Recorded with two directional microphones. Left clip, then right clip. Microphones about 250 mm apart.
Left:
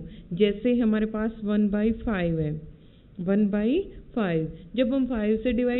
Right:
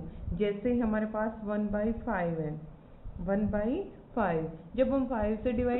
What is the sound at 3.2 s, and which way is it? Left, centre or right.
Speech, left.